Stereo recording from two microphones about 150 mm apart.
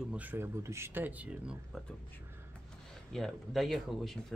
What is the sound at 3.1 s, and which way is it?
Speech, centre (ahead or behind).